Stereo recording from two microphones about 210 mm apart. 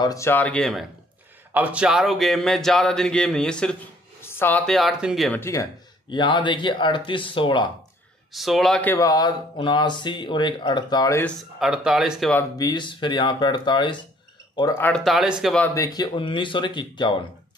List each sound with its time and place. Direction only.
0.0 s speech: 15° left (ahead or behind)
5.4 s speech: 15° left (ahead or behind)
8.3 s speech: centre (ahead or behind)
8.9 s speech: 15° left (ahead or behind)
11.6 s speech: 5° right (ahead or behind)
12.5 s speech: 20° left (ahead or behind)
14.9 s speech: centre (ahead or behind)
15.7 s speech: 15° left (ahead or behind)